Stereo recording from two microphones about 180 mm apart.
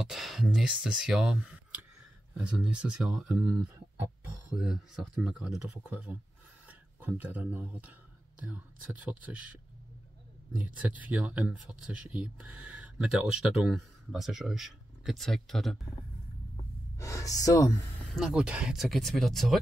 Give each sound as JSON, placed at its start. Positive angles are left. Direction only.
{"t": 0.0, "sound": "speech", "side_deg": 0}
{"t": 10.6, "sound": "speech", "side_deg": -10}
{"t": 16.9, "sound": "speech", "side_deg": 15}
{"t": 18.0, "sound": "speech", "side_deg": 0}